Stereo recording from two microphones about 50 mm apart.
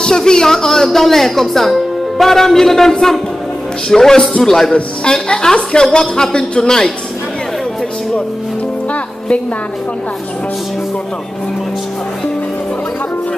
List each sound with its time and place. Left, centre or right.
0.0 s speech: centre